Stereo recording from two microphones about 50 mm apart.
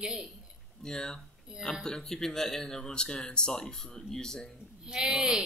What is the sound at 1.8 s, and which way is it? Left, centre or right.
Speech, centre.